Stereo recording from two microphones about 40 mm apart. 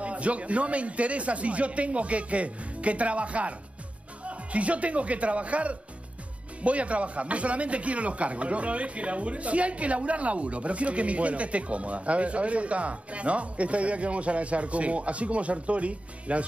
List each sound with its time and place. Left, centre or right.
0.0 s speech: right